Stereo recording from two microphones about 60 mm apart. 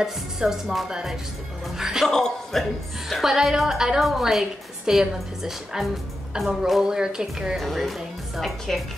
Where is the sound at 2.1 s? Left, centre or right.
Centre.